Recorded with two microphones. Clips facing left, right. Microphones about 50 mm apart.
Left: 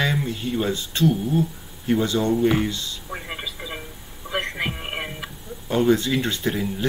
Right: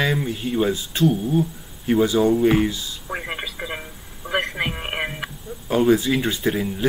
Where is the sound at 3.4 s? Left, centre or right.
Right.